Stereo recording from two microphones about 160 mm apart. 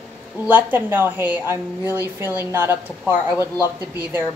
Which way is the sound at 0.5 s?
10° right (ahead or behind).